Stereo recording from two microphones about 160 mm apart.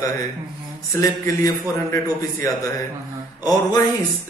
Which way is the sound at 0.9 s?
20° left (ahead or behind).